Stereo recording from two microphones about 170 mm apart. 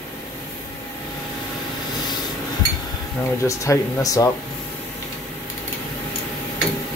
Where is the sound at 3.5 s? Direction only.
20° left (ahead or behind).